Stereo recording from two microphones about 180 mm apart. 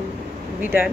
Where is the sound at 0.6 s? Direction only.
10° right (ahead or behind).